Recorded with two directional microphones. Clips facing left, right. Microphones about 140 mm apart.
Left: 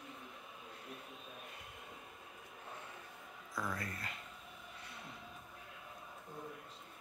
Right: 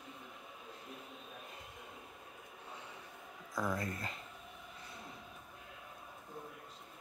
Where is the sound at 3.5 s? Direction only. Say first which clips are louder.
Right 5 dB; 20° right (ahead or behind).